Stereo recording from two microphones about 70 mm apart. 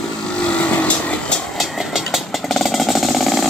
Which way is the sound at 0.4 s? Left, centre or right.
Left.